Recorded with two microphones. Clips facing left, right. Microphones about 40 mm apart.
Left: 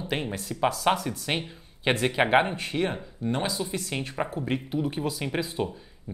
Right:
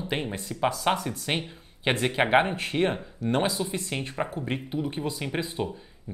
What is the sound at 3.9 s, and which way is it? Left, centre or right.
Speech, centre.